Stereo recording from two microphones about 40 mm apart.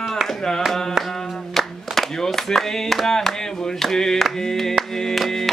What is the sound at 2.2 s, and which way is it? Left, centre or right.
Speech, centre.